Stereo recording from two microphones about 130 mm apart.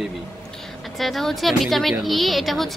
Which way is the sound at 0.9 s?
Centre (ahead or behind).